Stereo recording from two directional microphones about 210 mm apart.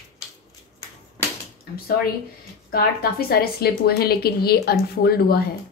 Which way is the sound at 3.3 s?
45° left (ahead or behind).